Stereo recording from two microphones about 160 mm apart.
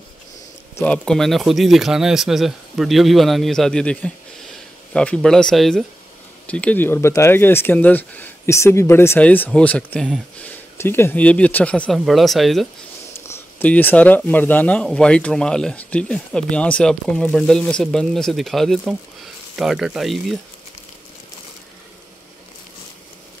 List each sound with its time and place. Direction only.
0.7 s speech: 5° left (ahead or behind)
13.3 s speech: 10° left (ahead or behind)